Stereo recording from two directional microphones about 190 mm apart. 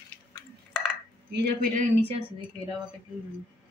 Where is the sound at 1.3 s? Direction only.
50° right (ahead or behind).